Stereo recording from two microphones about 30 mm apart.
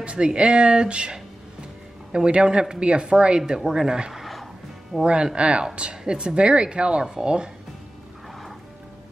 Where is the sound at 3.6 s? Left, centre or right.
Centre.